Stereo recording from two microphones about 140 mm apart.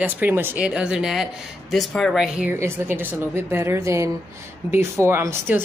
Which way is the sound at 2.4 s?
15° right (ahead or behind).